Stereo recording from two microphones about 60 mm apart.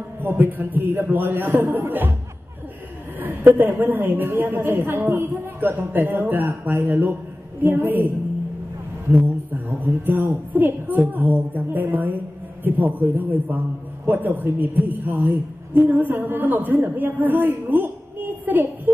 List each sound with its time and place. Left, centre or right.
0.2 s a woman's voice: right
3.2 s a woman's voice: right
5.8 s a woman's voice: right
9.7 s a woman's voice: right